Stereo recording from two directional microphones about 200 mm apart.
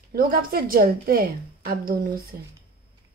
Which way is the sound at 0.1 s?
45° right (ahead or behind).